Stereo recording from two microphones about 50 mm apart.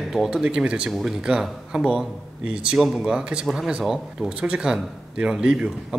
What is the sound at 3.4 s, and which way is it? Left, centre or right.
A man's voice, centre.